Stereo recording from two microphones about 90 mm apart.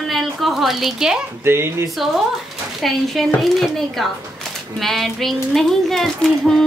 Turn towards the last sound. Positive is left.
turn(degrees=0)  # may be behind; listen again after turning